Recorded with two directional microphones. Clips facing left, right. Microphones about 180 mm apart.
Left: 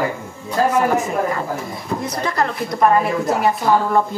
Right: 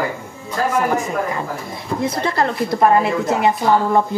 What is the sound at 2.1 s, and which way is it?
Speech, 30° right (ahead or behind).